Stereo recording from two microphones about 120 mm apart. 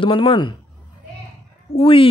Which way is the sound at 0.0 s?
45° left (ahead or behind).